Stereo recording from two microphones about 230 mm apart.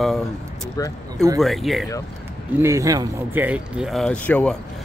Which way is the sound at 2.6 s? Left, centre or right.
Centre.